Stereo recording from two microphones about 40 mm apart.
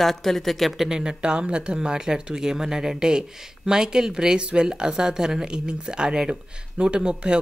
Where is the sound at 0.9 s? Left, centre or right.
Centre.